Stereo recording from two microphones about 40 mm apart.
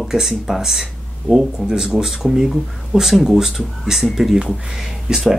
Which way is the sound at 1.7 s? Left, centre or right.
Centre.